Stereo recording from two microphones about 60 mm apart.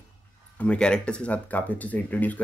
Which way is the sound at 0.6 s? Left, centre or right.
Centre.